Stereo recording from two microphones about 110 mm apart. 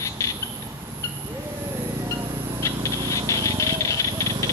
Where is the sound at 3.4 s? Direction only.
30° left (ahead or behind).